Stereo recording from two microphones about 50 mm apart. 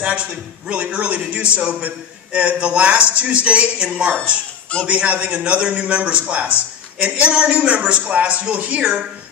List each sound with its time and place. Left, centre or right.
0.0 s a man's voice: right